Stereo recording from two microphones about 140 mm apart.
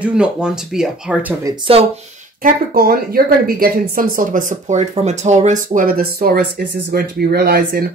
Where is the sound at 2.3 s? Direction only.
90° right.